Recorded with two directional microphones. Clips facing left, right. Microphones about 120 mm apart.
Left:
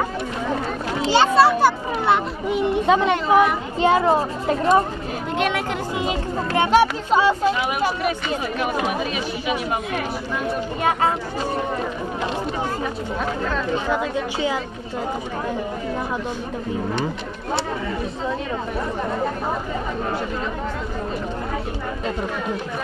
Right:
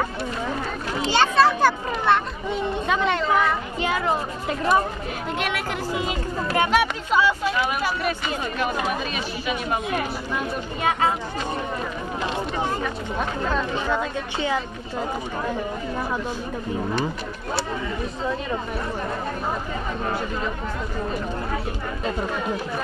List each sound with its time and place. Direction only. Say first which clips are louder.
1.0 s speech: left 3 dB; 15° left (ahead or behind)
3.8 s a child's voice: left 8 dB; 30° left (ahead or behind)
5.5 s a sound: left 2 dB; 25° left (ahead or behind)
7.6 s speech: left 3 dB; 15° left (ahead or behind)
10.8 s speech: left 1 dB; 45° left (ahead or behind)
13.8 s speech: left 3 dB; 15° left (ahead or behind)